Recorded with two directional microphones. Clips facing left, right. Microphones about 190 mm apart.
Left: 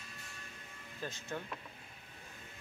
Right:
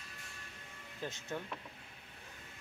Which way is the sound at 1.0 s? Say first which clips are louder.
Right 1 dB; 20° right (ahead or behind).